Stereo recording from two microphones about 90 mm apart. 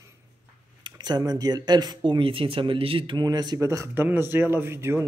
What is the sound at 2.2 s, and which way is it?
Speech, 90° right.